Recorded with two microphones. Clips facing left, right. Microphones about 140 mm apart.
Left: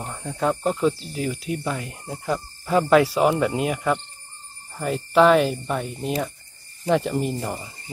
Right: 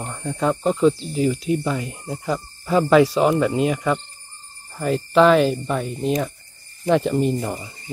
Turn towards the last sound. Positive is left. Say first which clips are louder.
# right 5 dB
turn(degrees=0)  # may be behind; listen again after turning